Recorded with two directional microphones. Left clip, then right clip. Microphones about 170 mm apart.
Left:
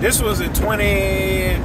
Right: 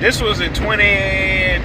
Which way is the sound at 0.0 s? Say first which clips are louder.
Right 3 dB; 20° left (ahead or behind).